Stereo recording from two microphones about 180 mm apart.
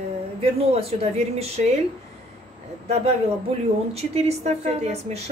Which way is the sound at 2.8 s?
35° right (ahead or behind).